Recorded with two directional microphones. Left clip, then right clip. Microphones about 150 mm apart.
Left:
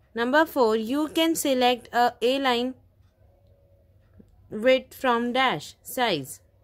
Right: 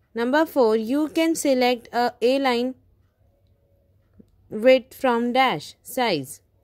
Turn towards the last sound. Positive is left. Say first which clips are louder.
# right 2 dB
turn(degrees=-30)  # may be behind; listen again after turning